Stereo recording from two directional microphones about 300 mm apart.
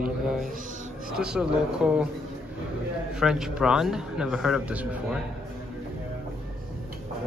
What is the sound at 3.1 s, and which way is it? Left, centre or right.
Speech, centre.